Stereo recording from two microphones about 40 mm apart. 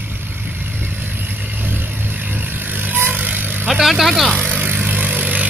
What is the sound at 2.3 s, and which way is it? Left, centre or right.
Vehicle, right.